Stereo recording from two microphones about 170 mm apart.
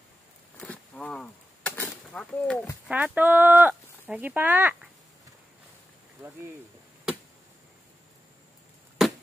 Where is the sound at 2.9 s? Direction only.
10° right (ahead or behind).